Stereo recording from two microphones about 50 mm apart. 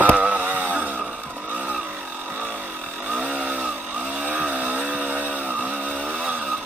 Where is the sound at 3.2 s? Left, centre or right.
Centre.